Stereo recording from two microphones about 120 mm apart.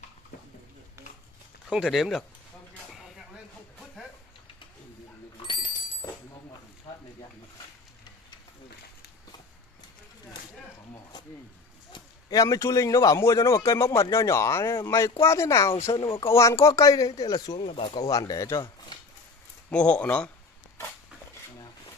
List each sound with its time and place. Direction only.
1.7 s speech: centre (ahead or behind)
5.4 s a sound: 45° left (ahead or behind)
11.9 s speech: 30° left (ahead or behind)
17.6 s speech: 50° left (ahead or behind); by 18.9 s 35° left (ahead or behind)
19.7 s speech: 10° left (ahead or behind)